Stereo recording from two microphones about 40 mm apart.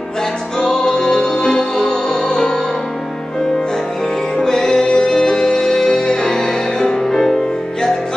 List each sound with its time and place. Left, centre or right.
0.7 s music: centre
4.4 s music: centre